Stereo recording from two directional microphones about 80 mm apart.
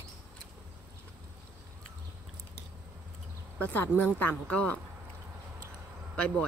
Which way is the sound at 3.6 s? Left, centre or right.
Left.